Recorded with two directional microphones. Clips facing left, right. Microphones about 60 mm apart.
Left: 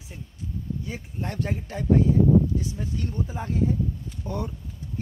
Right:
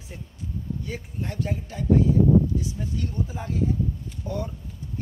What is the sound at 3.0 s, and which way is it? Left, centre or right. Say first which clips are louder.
Speech: right 1 dB; left.